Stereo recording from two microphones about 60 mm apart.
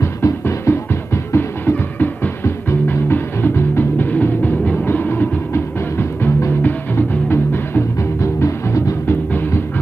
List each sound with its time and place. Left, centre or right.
0.0 s music: left
8.2 s music: left
9.0 s music: left